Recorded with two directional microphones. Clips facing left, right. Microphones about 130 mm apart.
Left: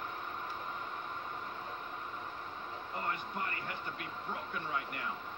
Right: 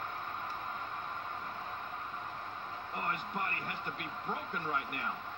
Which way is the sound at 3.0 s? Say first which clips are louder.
Right 1 dB; 50° right (ahead or behind).